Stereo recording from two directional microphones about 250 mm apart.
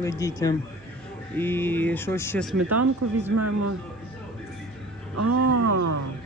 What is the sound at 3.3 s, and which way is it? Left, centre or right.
Speech, right.